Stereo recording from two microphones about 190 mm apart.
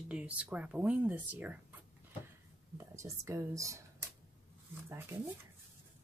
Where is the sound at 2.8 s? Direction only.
15° right (ahead or behind).